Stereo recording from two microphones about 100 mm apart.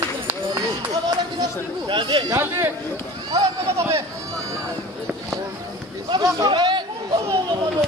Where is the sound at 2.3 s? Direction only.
30° right (ahead or behind).